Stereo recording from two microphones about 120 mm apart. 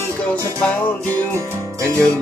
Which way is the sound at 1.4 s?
25° right (ahead or behind).